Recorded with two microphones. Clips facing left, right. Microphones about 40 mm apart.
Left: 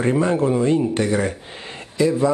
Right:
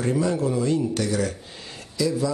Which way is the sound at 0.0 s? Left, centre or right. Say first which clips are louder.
Left 5 dB; left.